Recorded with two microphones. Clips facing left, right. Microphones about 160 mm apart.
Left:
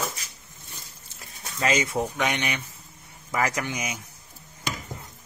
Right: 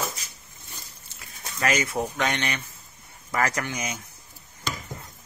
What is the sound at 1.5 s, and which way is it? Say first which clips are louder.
Speech: left 1 dB; 20° left (ahead or behind).